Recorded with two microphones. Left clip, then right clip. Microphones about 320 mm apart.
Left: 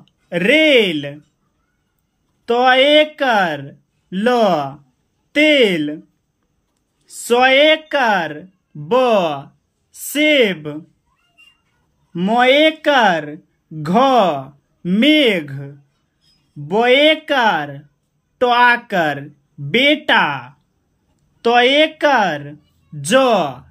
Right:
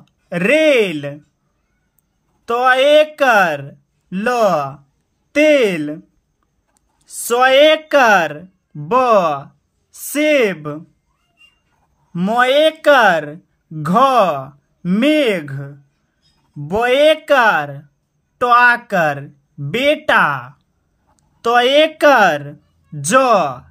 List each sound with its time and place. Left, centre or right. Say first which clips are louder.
0.0 s speech: left 1 dB; centre
2.4 s speech: even; right
7.9 s speech: right 5 dB; right
12.1 s speech: left 1 dB; right